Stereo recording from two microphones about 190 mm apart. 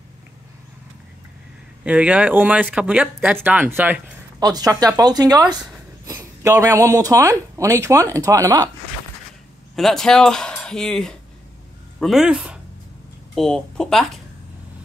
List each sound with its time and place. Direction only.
1.9 s speech: 5° right (ahead or behind)
4.4 s speech: 20° right (ahead or behind)
9.8 s speech: centre (ahead or behind)